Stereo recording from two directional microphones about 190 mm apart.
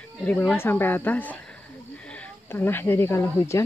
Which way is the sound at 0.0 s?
10° left (ahead or behind).